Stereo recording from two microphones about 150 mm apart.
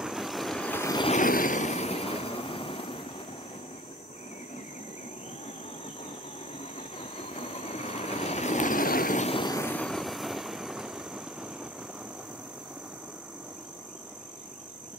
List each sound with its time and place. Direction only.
0.0 s vehicle: centre (ahead or behind)
0.7 s vehicle: 20° left (ahead or behind)
1.0 s vehicle: 60° left (ahead or behind); by 3.0 s 35° left (ahead or behind)
7.0 s vehicle: 40° left (ahead or behind); by 9.2 s 70° left (ahead or behind)
9.2 s vehicle: 40° left (ahead or behind)
9.5 s vehicle: 15° left (ahead or behind)
9.8 s vehicle: centre (ahead or behind)